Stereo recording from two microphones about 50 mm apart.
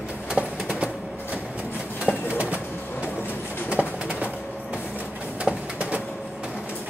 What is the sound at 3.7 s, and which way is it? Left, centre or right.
Pigeon, right.